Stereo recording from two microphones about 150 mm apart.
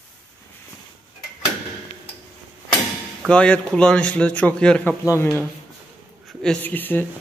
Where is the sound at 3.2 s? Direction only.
5° left (ahead or behind).